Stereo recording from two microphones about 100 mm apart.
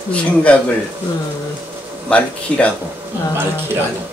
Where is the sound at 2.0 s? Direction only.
10° left (ahead or behind).